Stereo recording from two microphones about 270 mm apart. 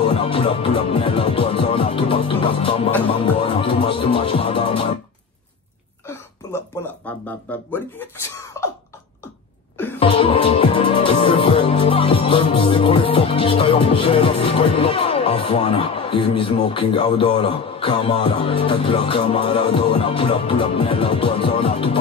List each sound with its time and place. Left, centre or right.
0.0 s music: centre
7.1 s a sound: centre
9.9 s music: centre